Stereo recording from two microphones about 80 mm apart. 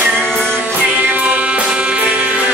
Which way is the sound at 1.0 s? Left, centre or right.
Centre.